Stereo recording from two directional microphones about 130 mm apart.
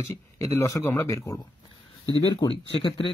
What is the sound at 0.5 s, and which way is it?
A man's voice, 25° left (ahead or behind).